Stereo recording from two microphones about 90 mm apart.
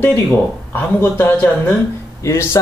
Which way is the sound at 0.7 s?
25° left (ahead or behind).